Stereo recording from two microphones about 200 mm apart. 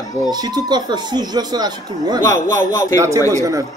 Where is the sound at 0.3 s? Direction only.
20° right (ahead or behind).